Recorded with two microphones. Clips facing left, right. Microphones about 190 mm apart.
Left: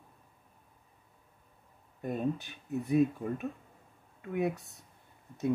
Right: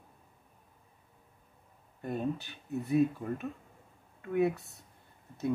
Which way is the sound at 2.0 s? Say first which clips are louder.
Left 1 dB; 15° left (ahead or behind).